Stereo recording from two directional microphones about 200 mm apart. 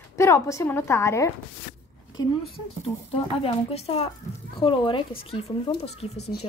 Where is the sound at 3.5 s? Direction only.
30° left (ahead or behind).